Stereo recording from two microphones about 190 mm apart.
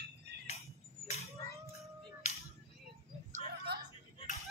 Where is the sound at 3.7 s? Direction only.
60° right (ahead or behind).